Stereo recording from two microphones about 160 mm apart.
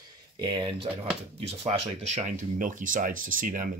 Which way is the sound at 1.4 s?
40° right (ahead or behind).